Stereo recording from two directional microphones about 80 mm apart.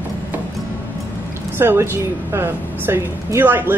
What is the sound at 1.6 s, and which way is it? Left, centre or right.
Speech, right.